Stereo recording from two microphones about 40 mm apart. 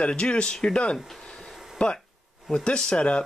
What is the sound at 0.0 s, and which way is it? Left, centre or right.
Speech, left.